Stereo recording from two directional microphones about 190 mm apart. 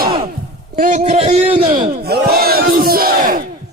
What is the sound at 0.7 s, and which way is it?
A man's voice, 45° right (ahead or behind).